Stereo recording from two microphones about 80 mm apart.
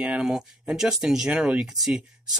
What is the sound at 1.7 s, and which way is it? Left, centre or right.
Speech, centre.